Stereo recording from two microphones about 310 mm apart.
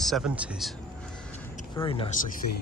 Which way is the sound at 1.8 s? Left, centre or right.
Centre.